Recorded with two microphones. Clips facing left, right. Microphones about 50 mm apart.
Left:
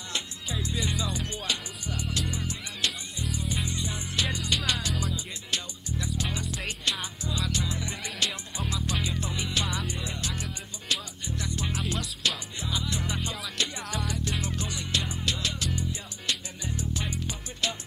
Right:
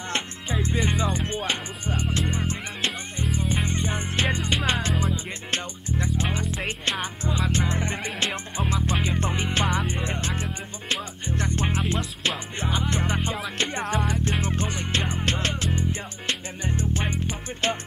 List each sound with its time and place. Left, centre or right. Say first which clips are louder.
0.1 s music: right 5 dB; right